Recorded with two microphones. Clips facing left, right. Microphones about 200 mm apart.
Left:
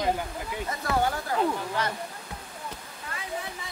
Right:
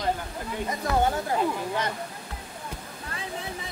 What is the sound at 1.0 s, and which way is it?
Speech, 20° right (ahead or behind).